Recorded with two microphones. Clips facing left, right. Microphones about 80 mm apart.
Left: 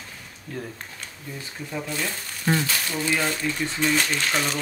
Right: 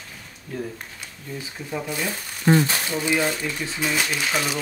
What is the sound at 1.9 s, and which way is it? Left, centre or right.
Speech, centre.